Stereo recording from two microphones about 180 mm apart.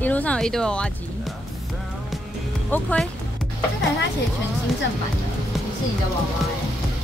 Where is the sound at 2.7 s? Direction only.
10° left (ahead or behind).